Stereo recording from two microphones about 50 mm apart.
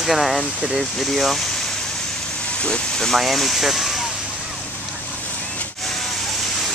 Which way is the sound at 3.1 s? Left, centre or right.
Centre.